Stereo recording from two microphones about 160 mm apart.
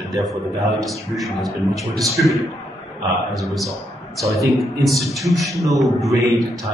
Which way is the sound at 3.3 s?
Centre (ahead or behind).